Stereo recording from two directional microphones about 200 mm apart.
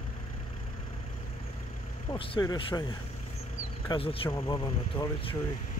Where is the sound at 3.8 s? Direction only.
25° left (ahead or behind).